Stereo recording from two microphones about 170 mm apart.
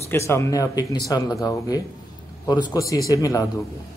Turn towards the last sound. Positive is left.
turn(degrees=20)  # may be behind; listen again after turning